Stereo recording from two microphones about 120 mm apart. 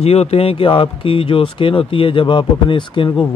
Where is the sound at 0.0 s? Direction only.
60° left (ahead or behind).